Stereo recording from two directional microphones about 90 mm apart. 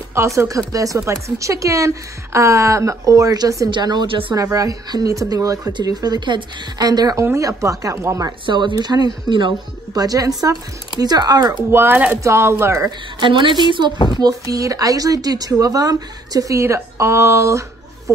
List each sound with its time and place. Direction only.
0.1 s speech: 30° right (ahead or behind)
3.7 s speech: 50° right (ahead or behind)
4.1 s speech: 80° right
4.4 s speech: 40° right (ahead or behind); by 6.4 s 55° right (ahead or behind)
6.8 s speech: 45° right (ahead or behind)
8.5 s a woman's voice: 60° right (ahead or behind)
9.9 s speech: 40° right (ahead or behind)
11.7 s speech: 25° right (ahead or behind)
13.2 s a woman's voice: 65° right (ahead or behind)
13.9 s speech: 60° left (ahead or behind)
14.2 s speech: 40° right (ahead or behind)